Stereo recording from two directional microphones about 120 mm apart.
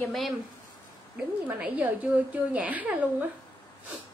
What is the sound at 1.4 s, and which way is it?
A woman's voice, 10° right (ahead or behind).